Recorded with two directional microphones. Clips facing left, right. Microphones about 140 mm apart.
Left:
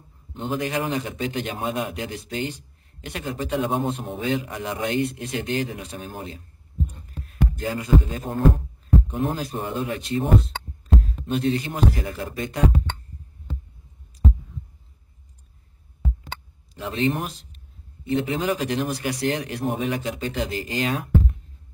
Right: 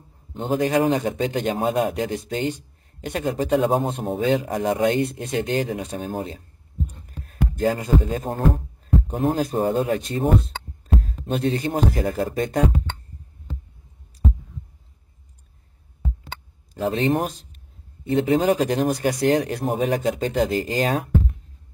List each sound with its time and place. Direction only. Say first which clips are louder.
0.3 s speech: right 5 dB; 40° right (ahead or behind)
7.1 s a sound: even; 40° right (ahead or behind)
8.8 s speech: right 2 dB; 40° right (ahead or behind)
16.7 s speech: right 4 dB; 40° right (ahead or behind)